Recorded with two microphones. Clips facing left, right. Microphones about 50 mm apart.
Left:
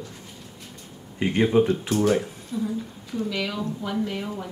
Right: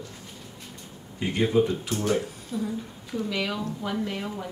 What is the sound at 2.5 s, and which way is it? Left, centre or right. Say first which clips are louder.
A woman's voice: left 3 dB; centre.